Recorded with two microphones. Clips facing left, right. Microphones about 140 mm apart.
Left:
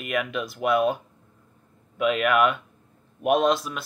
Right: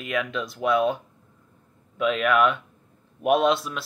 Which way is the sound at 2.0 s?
5° left (ahead or behind).